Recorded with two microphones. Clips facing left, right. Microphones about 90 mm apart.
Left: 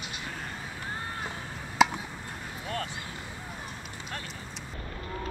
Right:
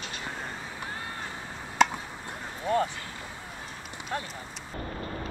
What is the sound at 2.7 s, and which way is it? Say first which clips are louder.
Vehicle: right 9 dB; 25° right (ahead or behind).